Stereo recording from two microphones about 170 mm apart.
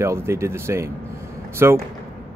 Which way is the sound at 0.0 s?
15° right (ahead or behind).